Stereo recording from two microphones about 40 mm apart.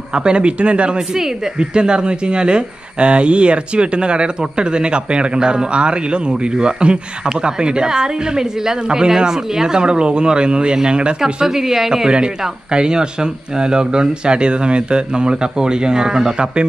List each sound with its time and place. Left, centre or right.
0.1 s speech: right
11.4 s speech: centre